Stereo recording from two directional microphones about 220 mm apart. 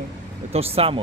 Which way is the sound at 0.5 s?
25° right (ahead or behind).